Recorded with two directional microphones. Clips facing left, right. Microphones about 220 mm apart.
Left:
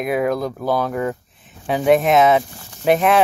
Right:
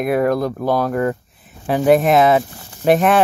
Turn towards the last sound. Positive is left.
turn(degrees=0)  # may be behind; listen again after turning